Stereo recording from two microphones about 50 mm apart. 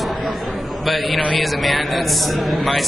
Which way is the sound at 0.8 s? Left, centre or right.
Centre.